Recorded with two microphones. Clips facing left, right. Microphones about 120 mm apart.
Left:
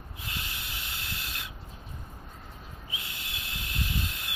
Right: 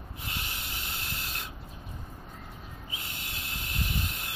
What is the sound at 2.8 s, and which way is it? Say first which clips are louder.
Owl: even; 35° right (ahead or behind).